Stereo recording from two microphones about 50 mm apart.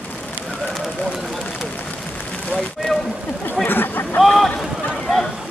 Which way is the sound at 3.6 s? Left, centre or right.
Left.